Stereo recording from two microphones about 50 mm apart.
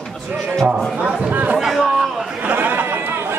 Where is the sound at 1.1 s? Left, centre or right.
Centre.